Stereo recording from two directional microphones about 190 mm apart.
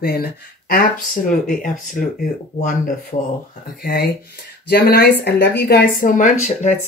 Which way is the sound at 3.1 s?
40° left (ahead or behind).